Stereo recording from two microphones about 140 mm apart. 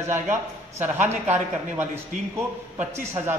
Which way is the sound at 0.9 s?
50° right (ahead or behind).